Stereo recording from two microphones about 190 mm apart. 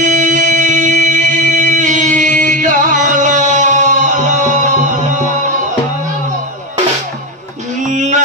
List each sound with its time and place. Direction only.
0.0 s music: 40° right (ahead or behind)
7.9 s music: 40° right (ahead or behind)